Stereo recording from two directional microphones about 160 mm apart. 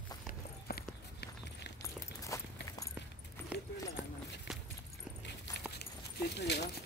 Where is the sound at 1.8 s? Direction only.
20° left (ahead or behind).